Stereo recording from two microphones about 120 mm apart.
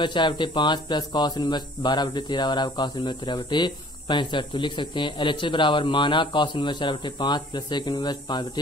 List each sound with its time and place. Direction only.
0.0 s speech: 40° left (ahead or behind)